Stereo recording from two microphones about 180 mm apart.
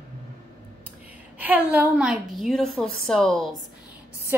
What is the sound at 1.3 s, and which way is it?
A woman's voice, 10° right (ahead or behind).